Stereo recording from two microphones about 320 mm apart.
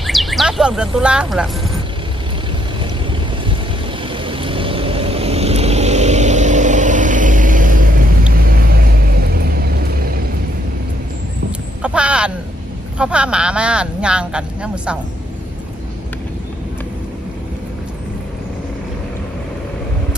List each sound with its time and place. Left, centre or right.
0.0 s chirp: centre
4.1 s vehicle: centre
11.8 s speech: centre